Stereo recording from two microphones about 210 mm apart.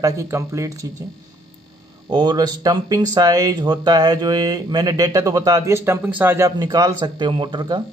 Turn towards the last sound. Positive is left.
turn(degrees=-25)  # may be behind; listen again after turning